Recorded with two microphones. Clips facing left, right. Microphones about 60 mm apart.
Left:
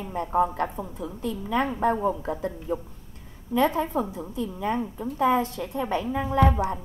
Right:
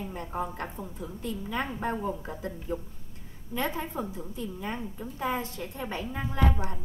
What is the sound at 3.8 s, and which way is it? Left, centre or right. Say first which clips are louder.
Speech: left 8 dB; left.